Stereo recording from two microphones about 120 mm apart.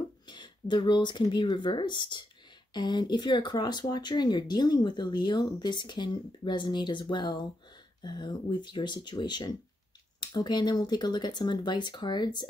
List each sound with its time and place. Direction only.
0.3 s speech: 40° left (ahead or behind)